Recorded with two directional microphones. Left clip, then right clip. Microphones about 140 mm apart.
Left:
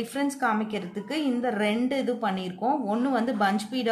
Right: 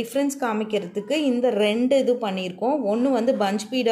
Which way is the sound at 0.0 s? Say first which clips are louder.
Right 3 dB; 25° right (ahead or behind).